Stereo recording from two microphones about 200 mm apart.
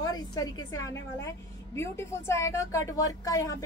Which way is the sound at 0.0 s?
20° left (ahead or behind).